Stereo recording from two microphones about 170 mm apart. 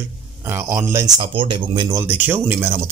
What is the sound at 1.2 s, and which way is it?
Speech, 30° right (ahead or behind).